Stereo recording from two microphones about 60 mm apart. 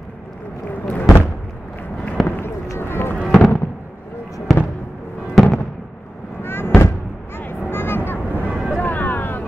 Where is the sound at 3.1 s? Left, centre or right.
Centre.